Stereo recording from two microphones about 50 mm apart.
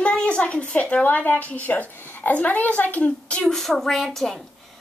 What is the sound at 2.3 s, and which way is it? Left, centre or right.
Speech, left.